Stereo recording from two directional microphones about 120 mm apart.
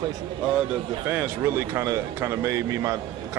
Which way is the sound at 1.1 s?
15° right (ahead or behind).